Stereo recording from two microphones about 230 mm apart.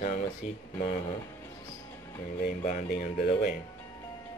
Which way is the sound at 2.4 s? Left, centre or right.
Left.